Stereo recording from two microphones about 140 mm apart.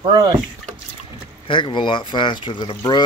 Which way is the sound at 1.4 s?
35° left (ahead or behind).